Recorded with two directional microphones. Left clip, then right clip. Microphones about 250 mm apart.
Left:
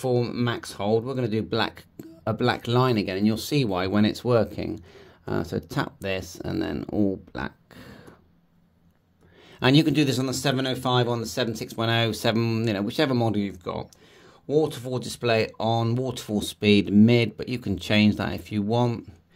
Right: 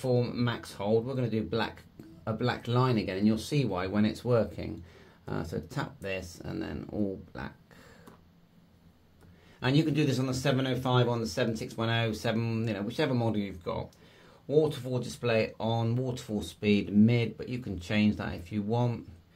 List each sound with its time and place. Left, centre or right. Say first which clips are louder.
0.0 s speech: left 4 dB; left
9.6 s speech: left 8 dB; left